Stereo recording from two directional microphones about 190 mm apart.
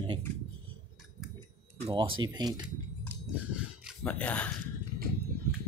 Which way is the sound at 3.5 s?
5° left (ahead or behind).